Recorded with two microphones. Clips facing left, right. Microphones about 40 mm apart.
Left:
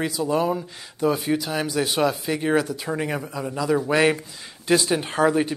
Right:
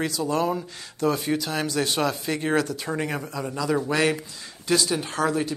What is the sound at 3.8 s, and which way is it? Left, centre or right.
Speech, centre.